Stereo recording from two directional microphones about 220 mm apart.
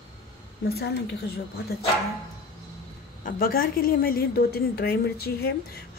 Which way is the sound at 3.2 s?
40° left (ahead or behind).